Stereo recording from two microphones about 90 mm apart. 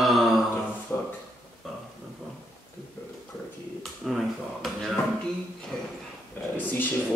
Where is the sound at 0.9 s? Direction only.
15° left (ahead or behind).